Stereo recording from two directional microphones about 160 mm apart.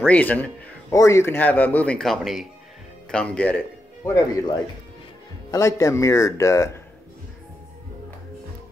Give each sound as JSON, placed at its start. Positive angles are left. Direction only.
{"t": 0.0, "sound": "speech", "side_deg": 10}
{"t": 4.0, "sound": "speech", "side_deg": 20}